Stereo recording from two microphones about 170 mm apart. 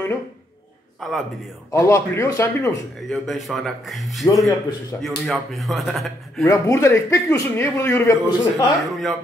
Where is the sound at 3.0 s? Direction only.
Centre (ahead or behind).